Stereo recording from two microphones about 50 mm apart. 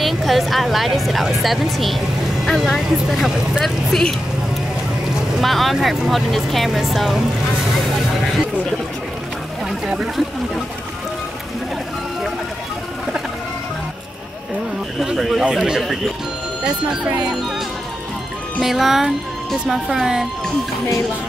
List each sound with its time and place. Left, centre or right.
0.0 s speech: centre
3.6 s speech: centre
5.4 s speech: centre
15.1 s speech: centre
18.6 s speech: centre